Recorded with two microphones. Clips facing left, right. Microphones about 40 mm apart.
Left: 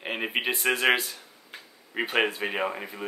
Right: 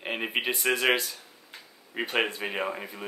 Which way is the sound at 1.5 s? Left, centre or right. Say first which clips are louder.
Left 3 dB; left.